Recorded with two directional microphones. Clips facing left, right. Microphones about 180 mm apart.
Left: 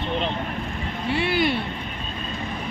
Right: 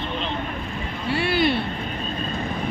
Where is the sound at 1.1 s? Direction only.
20° left (ahead or behind).